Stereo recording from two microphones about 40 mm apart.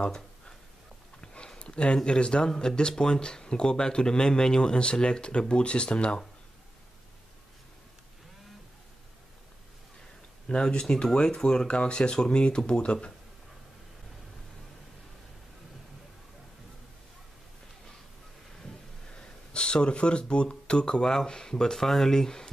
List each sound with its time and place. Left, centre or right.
1.2 s a sound: left
2.0 s speech: left
10.5 s speech: centre
19.1 s speech: left